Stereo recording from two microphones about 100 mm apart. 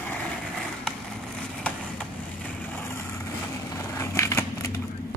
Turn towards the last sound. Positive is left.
turn(degrees=30)  # may be behind; listen again after turning